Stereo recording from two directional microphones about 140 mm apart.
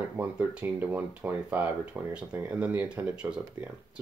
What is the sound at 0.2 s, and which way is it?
Speech, 10° right (ahead or behind).